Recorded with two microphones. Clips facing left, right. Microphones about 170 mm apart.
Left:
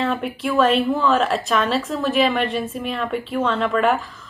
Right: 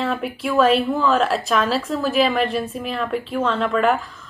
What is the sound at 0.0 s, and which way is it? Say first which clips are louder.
A woman's voice: left 1 dB; centre (ahead or behind).